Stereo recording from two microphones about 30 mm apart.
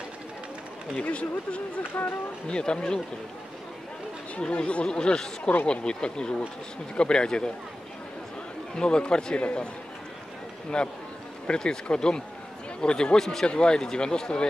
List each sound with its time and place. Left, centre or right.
0.9 s speech: left
1.8 s speech: left
2.4 s speech: left
4.4 s speech: left
4.8 s speech: left
8.7 s speech: left
10.7 s speech: left
13.2 s speech: centre
13.5 s speech: left